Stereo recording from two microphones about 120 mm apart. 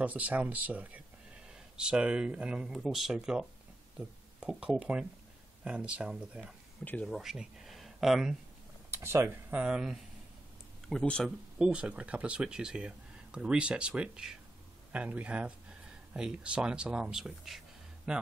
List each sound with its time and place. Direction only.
0.0 s speech: 10° right (ahead or behind)
6.8 s speech: 10° left (ahead or behind)
7.1 s speech: 5° right (ahead or behind)
8.9 s speech: 20° right (ahead or behind)
9.6 s speech: 5° right (ahead or behind)
10.9 s speech: 5° left (ahead or behind)
11.2 s speech: 5° right (ahead or behind)